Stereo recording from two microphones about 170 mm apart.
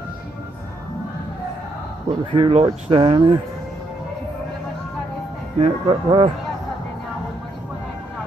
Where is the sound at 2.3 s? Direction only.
30° right (ahead or behind).